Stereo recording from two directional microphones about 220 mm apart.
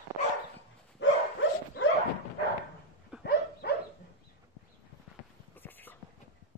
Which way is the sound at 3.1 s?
5° right (ahead or behind).